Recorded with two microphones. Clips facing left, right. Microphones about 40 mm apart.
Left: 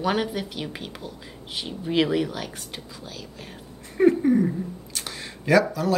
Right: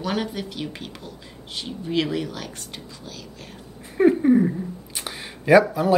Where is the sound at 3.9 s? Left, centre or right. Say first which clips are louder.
Right 2 dB; centre.